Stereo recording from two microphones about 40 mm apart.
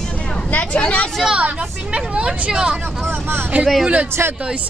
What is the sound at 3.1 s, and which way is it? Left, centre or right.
Speech, right.